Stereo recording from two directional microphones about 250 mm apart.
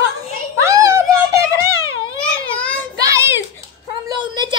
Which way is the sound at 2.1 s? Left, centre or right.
Centre.